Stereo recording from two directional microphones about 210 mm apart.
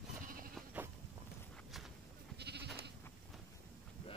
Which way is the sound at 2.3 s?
50° right (ahead or behind).